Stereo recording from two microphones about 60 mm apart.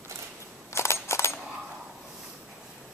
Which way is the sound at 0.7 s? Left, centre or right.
Left.